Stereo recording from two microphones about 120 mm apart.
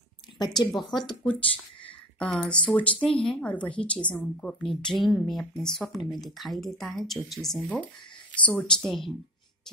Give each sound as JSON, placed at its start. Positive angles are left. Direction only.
{"t": 0.4, "sound": "speech", "side_deg": 35}
{"t": 2.1, "sound": "a woman's voice", "side_deg": 10}